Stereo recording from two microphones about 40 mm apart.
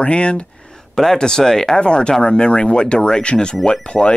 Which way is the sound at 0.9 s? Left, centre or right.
Centre.